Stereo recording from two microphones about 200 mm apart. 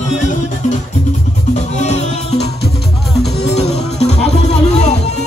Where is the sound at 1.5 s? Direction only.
35° left (ahead or behind).